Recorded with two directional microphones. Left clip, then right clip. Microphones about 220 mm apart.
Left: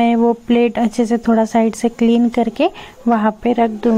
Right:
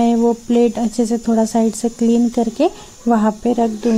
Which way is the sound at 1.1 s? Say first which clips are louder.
Left 3 dB; 10° left (ahead or behind).